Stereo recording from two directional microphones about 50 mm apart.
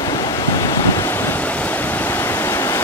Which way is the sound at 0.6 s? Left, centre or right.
Left.